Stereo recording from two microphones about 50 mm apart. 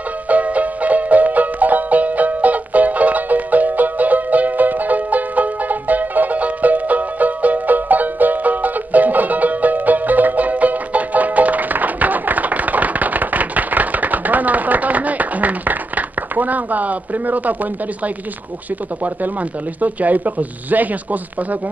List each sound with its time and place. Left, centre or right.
0.3 s music: right
19.8 s speech: right